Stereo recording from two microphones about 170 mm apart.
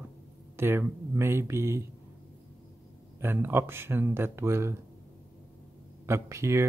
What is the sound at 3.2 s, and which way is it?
Speech, 15° right (ahead or behind).